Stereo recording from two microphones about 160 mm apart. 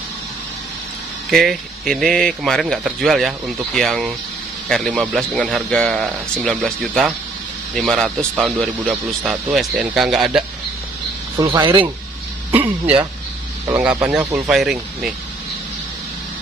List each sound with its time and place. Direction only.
1.3 s speech: centre (ahead or behind)
11.3 s speech: 25° right (ahead or behind)
12.4 s speech: 10° right (ahead or behind)
14.0 s speech: 10° right (ahead or behind)